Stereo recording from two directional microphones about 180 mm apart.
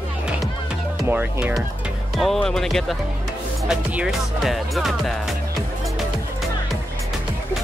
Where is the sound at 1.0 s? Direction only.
10° right (ahead or behind).